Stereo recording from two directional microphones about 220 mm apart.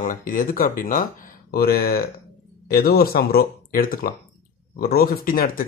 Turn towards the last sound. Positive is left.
turn(degrees=40)  # may be behind; listen again after turning